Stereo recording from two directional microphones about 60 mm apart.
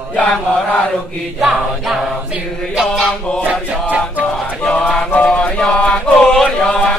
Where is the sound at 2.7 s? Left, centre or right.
Centre.